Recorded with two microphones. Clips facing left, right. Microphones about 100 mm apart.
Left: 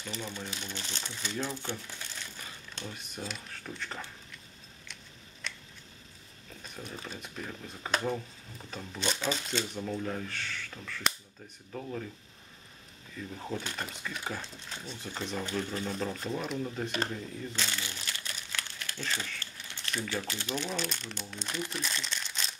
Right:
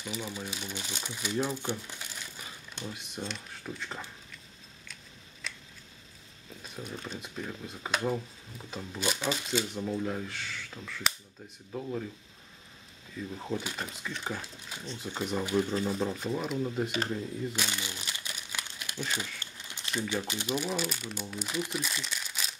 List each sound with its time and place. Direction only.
0.0 s speech: 10° right (ahead or behind)
3.0 s speech: centre (ahead or behind)
5.4 s a sound: centre (ahead or behind)
6.7 s speech: centre (ahead or behind)
13.4 s speech: 5° right (ahead or behind)
14.7 s speech: 10° right (ahead or behind)
17.5 s crumpling: 15° right (ahead or behind)
20.1 s speech: 15° right (ahead or behind)